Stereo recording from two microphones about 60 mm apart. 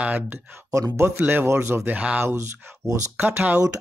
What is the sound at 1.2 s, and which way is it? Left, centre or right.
Speech, right.